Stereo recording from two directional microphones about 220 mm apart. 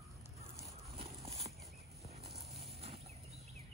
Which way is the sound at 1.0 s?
30° right (ahead or behind).